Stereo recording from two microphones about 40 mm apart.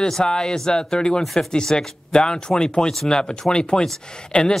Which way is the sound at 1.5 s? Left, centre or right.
Centre.